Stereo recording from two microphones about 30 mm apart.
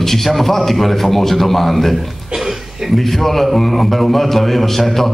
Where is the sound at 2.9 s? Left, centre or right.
Centre.